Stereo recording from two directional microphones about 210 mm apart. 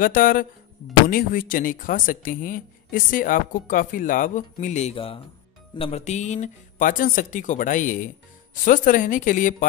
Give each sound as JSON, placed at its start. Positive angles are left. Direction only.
{"t": 0.0, "sound": "speech", "side_deg": 40}